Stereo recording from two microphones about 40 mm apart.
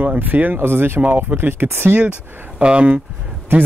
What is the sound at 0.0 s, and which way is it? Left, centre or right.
Speech, right.